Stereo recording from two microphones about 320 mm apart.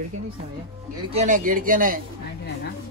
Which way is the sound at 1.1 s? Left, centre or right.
Right.